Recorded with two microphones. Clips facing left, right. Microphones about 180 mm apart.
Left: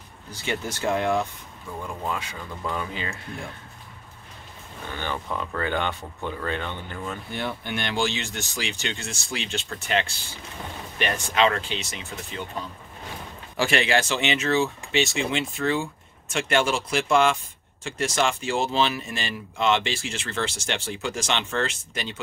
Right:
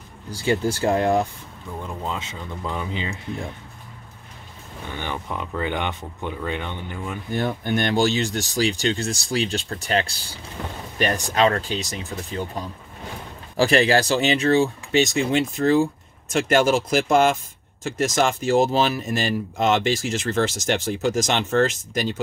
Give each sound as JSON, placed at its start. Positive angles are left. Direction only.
{"t": 0.3, "sound": "speech", "side_deg": -35}
{"t": 1.9, "sound": "speech", "side_deg": -20}
{"t": 4.9, "sound": "speech", "side_deg": -15}
{"t": 7.3, "sound": "speech", "side_deg": -45}
{"t": 13.6, "sound": "speech", "side_deg": -40}